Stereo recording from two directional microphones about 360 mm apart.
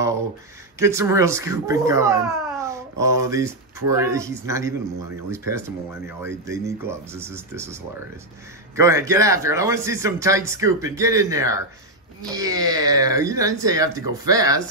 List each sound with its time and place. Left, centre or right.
0.7 s a man's voice: centre
8.7 s a man's voice: centre